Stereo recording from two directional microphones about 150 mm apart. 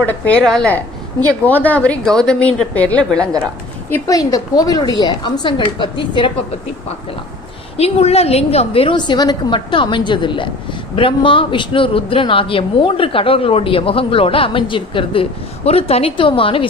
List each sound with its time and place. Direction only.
0.4 s a woman's voice: 5° left (ahead or behind)
3.9 s a woman's voice: 25° left (ahead or behind)
7.7 s a man's voice: 45° left (ahead or behind)